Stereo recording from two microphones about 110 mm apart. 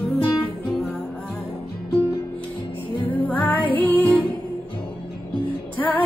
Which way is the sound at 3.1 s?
15° left (ahead or behind).